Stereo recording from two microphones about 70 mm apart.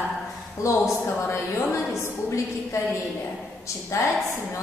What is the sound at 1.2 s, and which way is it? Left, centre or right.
A woman's voice, left.